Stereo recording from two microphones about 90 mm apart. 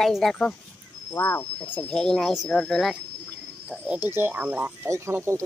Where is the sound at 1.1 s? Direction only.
30° left (ahead or behind).